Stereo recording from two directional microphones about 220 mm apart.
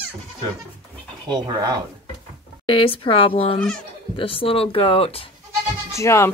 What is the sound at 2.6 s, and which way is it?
Speech, 25° left (ahead or behind).